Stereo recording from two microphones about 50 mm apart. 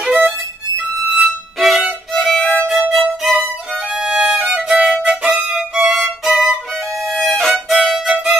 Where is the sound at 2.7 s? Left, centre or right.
Centre.